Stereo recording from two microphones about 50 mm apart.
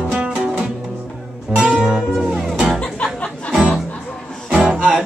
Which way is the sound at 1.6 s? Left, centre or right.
Centre.